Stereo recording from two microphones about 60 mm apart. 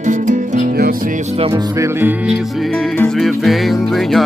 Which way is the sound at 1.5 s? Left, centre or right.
Right.